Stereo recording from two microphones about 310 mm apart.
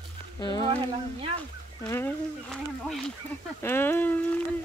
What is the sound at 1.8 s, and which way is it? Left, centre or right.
Speech, centre.